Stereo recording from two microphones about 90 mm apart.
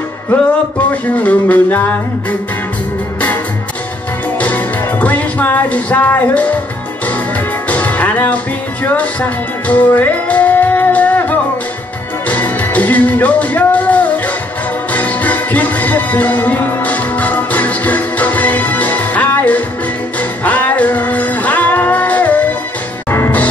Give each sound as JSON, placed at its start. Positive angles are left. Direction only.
{"t": 1.1, "sound": "music", "side_deg": 15}
{"t": 4.4, "sound": "music", "side_deg": 15}
{"t": 7.7, "sound": "music", "side_deg": 15}
{"t": 23.0, "sound": "music", "side_deg": 30}